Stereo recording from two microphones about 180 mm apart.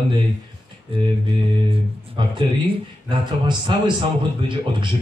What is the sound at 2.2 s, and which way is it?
Speech, 25° right (ahead or behind).